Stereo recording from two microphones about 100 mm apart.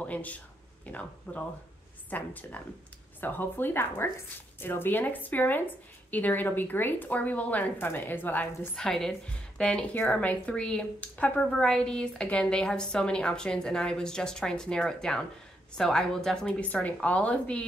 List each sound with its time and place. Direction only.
0.0 s a sound: 15° left (ahead or behind)
0.8 s a woman's voice: 15° left (ahead or behind)
8.7 s a woman's voice: 5° left (ahead or behind)